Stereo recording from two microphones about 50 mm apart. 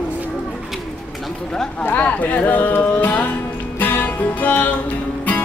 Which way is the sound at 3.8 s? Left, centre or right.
Left.